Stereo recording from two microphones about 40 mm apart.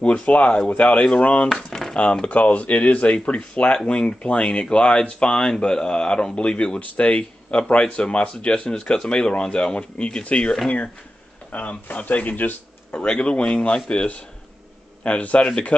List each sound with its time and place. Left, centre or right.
0.0 s speech: left
1.5 s a sound: centre
2.2 s speech: left
11.5 s speech: left
12.9 s speech: left